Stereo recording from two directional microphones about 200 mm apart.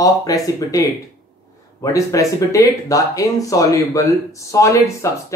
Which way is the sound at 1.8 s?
15° left (ahead or behind).